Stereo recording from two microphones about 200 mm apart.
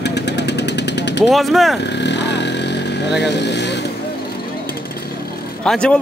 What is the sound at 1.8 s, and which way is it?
Vehicle, 60° left (ahead or behind).